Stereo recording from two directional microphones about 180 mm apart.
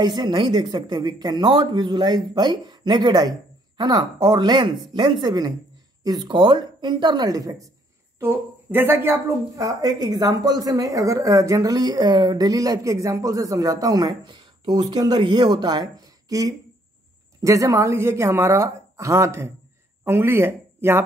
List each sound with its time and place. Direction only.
0.0 s a woman's voice: 25° right (ahead or behind)